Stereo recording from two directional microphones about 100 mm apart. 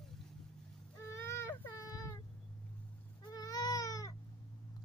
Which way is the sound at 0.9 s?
25° left (ahead or behind).